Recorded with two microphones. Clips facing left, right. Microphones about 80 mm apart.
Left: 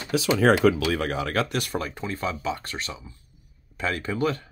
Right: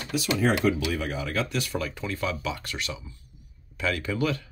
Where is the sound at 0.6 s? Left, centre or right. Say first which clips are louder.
Left 4 dB; left.